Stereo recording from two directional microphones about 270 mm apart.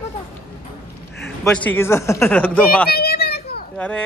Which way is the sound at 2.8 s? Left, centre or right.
Left.